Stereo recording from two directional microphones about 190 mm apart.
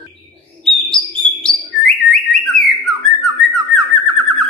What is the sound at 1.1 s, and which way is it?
Bird, 35° left (ahead or behind).